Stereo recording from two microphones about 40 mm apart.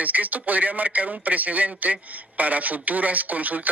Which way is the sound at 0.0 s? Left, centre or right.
Right.